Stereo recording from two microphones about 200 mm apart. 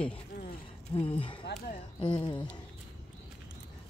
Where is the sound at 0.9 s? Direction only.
30° left (ahead or behind).